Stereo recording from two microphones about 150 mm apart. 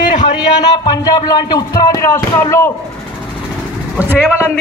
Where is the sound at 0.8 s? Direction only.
25° left (ahead or behind).